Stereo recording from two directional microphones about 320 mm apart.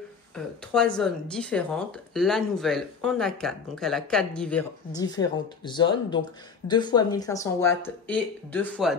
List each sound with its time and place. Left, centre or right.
0.7 s speech: centre